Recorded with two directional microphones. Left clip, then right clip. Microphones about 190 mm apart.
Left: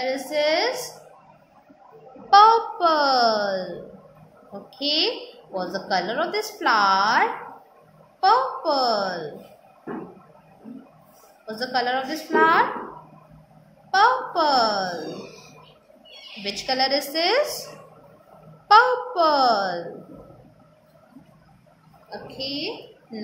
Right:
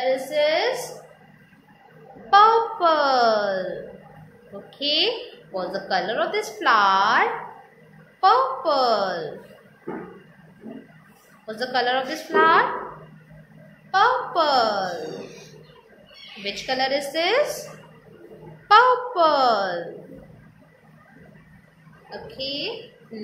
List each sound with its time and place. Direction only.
0.0 s a woman's voice: 15° left (ahead or behind)
2.2 s a sound: 20° left (ahead or behind)
4.6 s a woman's voice: 15° left (ahead or behind)
11.4 s a woman's voice: 10° left (ahead or behind)
13.8 s a woman's voice: 15° left (ahead or behind)
16.4 s a woman's voice: 15° left (ahead or behind)
18.7 s a woman's voice: 15° left (ahead or behind)
22.1 s a woman's voice: 10° left (ahead or behind)